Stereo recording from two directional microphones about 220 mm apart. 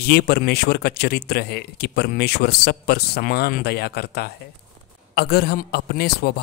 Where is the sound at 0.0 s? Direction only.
45° left (ahead or behind).